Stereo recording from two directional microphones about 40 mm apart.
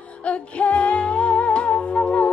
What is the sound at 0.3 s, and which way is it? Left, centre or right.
Music, left.